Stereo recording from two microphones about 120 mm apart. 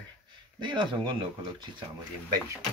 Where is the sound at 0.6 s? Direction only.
40° right (ahead or behind).